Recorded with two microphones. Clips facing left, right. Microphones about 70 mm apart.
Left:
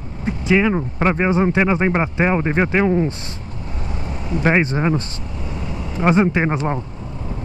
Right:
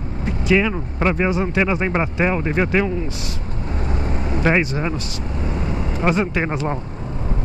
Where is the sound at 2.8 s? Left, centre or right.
Left.